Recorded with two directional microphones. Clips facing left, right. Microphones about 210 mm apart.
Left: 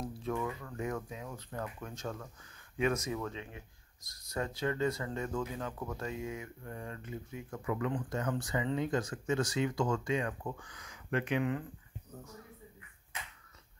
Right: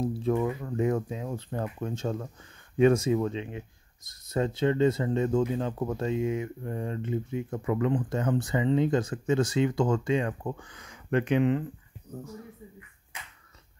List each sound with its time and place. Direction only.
0.2 s speech: 35° right (ahead or behind)